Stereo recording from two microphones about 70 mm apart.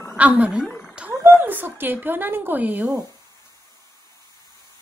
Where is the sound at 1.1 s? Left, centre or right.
Right.